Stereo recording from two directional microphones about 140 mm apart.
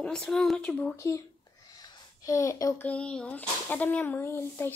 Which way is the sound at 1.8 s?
25° left (ahead or behind).